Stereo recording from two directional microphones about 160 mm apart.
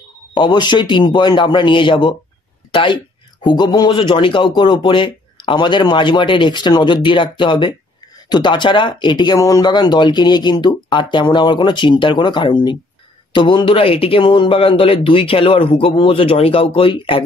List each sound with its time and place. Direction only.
0.3 s speech: 30° left (ahead or behind)